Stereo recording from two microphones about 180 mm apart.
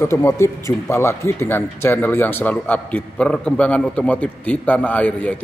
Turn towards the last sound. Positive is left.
turn(degrees=10)  # may be behind; listen again after turning